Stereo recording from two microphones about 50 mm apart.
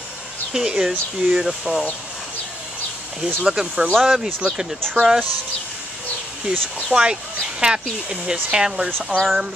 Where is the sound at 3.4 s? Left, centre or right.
Centre.